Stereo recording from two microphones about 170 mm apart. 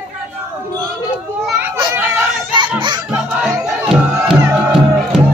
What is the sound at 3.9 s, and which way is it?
Music, centre (ahead or behind).